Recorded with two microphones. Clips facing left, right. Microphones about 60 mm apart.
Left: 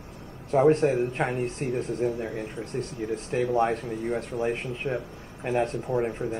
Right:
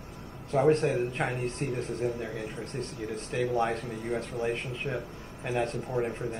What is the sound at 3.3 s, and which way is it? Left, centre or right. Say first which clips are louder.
Speech: left 3 dB; left.